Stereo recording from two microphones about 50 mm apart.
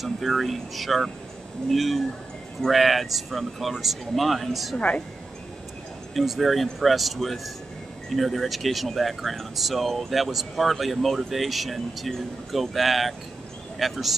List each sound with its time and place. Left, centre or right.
0.0 s speech: centre
4.7 s a woman's voice: left
6.1 s speech: centre